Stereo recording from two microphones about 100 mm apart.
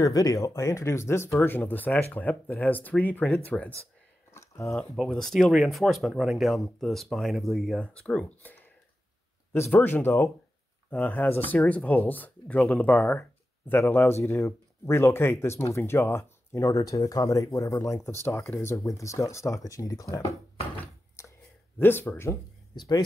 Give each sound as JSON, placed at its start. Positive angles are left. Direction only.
{"t": 0.0, "sound": "speech", "side_deg": 35}
{"t": 4.3, "sound": "a sound", "side_deg": 30}
{"t": 4.7, "sound": "speech", "side_deg": 5}
{"t": 21.2, "sound": "a sound", "side_deg": 25}
{"t": 21.7, "sound": "speech", "side_deg": 20}
{"t": 22.8, "sound": "speech", "side_deg": 45}